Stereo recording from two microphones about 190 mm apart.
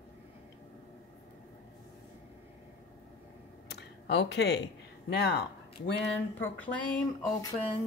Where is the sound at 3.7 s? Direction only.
65° left (ahead or behind).